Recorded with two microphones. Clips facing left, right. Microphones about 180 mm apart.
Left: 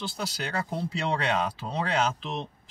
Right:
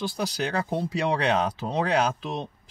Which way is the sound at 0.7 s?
20° right (ahead or behind).